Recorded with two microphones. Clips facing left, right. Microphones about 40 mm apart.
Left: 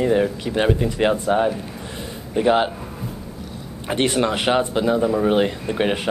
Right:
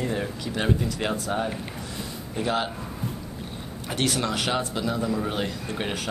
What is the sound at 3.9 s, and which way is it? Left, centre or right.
A man's voice, left.